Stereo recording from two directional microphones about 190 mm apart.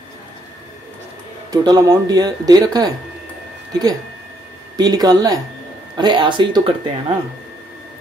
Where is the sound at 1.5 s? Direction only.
20° right (ahead or behind).